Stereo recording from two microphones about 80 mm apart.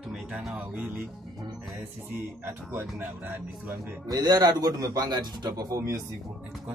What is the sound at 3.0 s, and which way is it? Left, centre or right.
Speech, right.